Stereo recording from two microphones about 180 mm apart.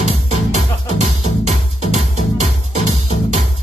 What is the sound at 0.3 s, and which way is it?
Music, 40° right (ahead or behind).